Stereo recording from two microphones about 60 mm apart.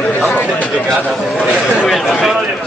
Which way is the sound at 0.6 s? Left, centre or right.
Left.